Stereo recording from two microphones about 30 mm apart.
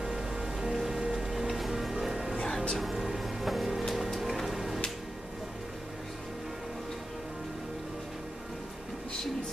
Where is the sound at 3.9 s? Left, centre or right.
Centre.